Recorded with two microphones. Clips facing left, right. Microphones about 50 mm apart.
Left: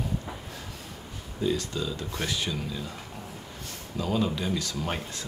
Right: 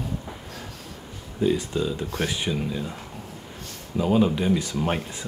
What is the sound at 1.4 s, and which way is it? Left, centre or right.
Speech, right.